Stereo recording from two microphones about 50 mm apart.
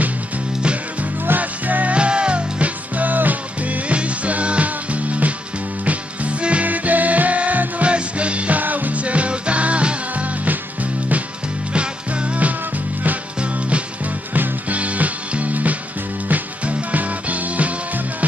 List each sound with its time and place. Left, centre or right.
1.4 s music: right
2.0 s music: right